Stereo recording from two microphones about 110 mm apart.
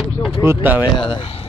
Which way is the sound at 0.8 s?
50° left (ahead or behind).